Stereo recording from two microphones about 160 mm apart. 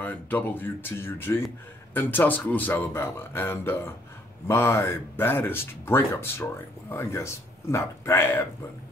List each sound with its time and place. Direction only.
0.0 s speech: 10° left (ahead or behind)